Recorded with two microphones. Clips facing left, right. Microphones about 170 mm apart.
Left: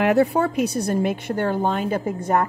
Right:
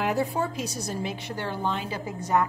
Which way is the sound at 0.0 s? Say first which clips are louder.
Left 8 dB; 65° left (ahead or behind).